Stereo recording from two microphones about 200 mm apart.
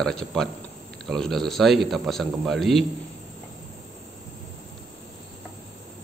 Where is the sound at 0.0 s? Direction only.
Centre (ahead or behind).